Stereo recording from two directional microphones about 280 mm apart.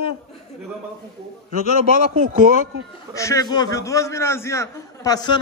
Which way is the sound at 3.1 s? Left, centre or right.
Centre.